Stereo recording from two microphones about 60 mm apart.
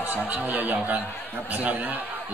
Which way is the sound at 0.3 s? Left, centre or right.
Right.